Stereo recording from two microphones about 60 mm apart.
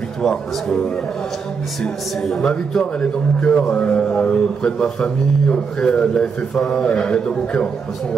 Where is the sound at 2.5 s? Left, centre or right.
Centre.